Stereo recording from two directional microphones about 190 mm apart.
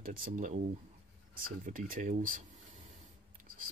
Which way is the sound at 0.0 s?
45° right (ahead or behind).